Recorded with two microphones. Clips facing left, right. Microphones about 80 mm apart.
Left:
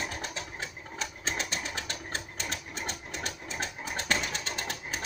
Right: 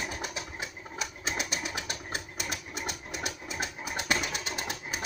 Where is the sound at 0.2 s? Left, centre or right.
Centre.